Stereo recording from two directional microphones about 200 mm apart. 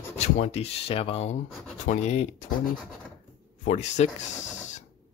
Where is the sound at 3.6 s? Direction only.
35° left (ahead or behind).